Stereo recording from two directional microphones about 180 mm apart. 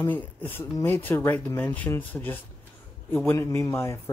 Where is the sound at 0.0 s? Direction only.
10° left (ahead or behind).